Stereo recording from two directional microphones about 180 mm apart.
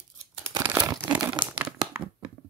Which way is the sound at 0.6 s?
10° right (ahead or behind).